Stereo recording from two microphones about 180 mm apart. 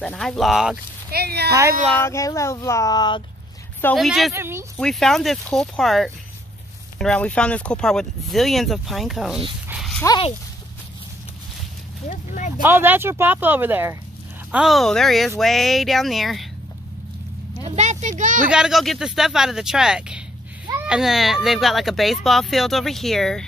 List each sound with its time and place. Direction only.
0.0 s speech: centre (ahead or behind)
1.1 s speech: 60° right (ahead or behind)
1.5 s speech: 15° right (ahead or behind)
1.9 s speech: 15° left (ahead or behind)
3.9 s speech: centre (ahead or behind)
4.3 s speech: 15° right (ahead or behind)
4.7 s speech: 5° left (ahead or behind)
9.7 s a sound: centre (ahead or behind)
10.0 s speech: 25° left (ahead or behind)
12.1 s speech: 40° left (ahead or behind)
12.6 s speech: 10° right (ahead or behind)
17.6 s a sound: 40° right (ahead or behind)
18.5 s speech: 5° right (ahead or behind)